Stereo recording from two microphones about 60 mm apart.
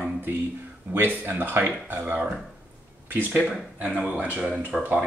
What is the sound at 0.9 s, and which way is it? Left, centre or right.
Speech, right.